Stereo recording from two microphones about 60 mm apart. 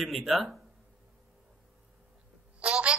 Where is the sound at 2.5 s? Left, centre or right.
Centre.